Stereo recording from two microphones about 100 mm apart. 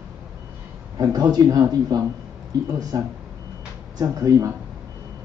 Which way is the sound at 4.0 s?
35° right (ahead or behind).